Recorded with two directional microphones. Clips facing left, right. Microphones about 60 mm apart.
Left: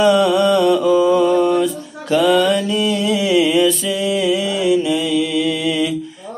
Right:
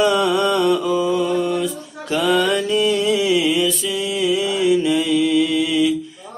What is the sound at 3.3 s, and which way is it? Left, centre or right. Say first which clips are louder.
Mantra: left 4 dB; centre.